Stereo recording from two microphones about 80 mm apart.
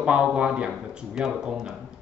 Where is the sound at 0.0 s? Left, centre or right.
Centre.